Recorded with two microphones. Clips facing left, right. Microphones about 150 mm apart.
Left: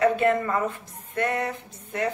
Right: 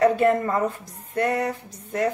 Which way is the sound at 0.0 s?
35° right (ahead or behind).